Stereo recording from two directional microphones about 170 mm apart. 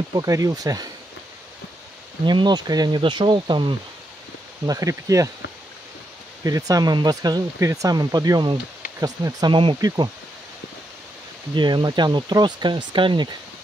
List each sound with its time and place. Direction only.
0.1 s speech: 20° right (ahead or behind)
2.2 s speech: 25° right (ahead or behind)
6.4 s speech: 20° right (ahead or behind)
11.5 s speech: 25° right (ahead or behind)